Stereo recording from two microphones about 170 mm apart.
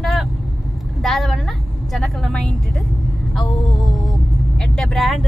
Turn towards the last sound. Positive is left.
turn(degrees=0)  # may be behind; listen again after turning